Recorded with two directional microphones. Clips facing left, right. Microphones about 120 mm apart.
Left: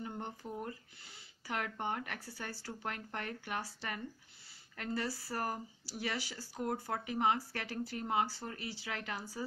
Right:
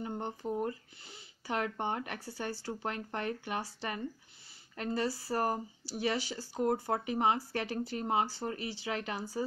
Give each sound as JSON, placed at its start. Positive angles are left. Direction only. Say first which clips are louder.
{"t": 0.0, "sound": "speech", "louder": "right 5 dB", "side_deg": -25}